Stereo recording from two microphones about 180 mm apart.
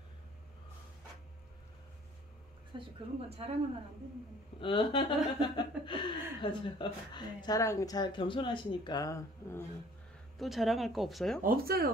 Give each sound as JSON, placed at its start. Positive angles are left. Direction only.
{"t": 2.7, "sound": "a woman's voice", "side_deg": -25}
{"t": 4.6, "sound": "speech", "side_deg": 30}
{"t": 10.4, "sound": "speech", "side_deg": 0}
{"t": 11.4, "sound": "speech", "side_deg": -55}